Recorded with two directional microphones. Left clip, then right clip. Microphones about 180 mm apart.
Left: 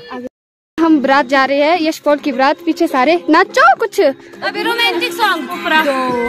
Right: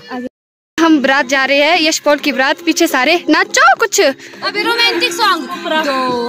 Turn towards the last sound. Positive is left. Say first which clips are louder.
# even
turn(degrees=0)  # may be behind; listen again after turning